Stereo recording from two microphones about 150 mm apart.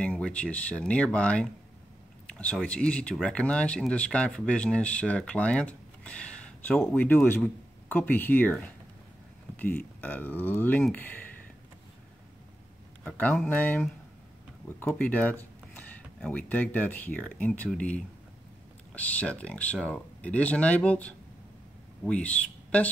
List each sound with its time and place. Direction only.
0.0 s speech: 10° left (ahead or behind)
9.6 s speech: 10° left (ahead or behind)
13.0 s speech: 5° left (ahead or behind)